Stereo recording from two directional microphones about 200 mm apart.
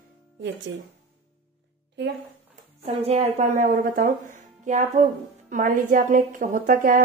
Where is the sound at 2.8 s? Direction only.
30° right (ahead or behind).